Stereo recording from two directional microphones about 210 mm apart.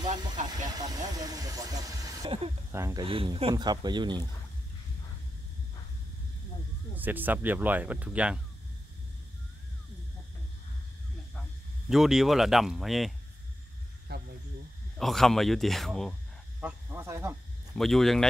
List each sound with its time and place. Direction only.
0.5 s vehicle: 20° right (ahead or behind)
2.7 s speech: 15° right (ahead or behind)
7.0 s speech: 10° right (ahead or behind)
11.9 s speech: centre (ahead or behind)
14.1 s a sound: 50° right (ahead or behind)
15.0 s speech: centre (ahead or behind)
16.6 s speech: 10° right (ahead or behind)
17.7 s speech: centre (ahead or behind)